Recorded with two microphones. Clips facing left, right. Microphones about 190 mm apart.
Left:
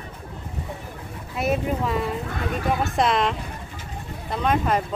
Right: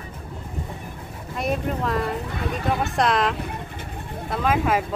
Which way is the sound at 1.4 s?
5° left (ahead or behind).